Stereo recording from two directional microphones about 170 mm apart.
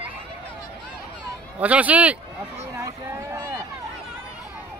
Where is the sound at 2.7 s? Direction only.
20° right (ahead or behind).